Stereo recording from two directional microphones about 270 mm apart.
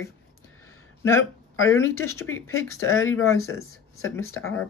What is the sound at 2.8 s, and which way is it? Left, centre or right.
Speech, left.